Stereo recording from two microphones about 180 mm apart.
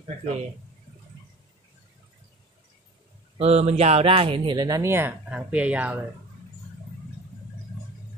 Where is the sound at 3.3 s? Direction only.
35° right (ahead or behind); by 5.9 s 5° right (ahead or behind).